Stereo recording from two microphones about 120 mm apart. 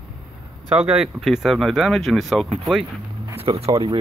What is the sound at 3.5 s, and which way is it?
Speech, 40° right (ahead or behind).